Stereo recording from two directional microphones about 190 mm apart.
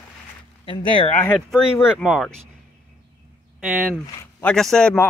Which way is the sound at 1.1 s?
10° left (ahead or behind).